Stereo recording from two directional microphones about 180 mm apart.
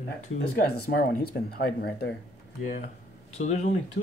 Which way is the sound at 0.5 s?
60° left (ahead or behind).